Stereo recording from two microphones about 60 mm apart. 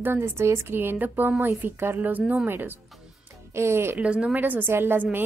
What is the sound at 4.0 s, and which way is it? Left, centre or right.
Speech, centre.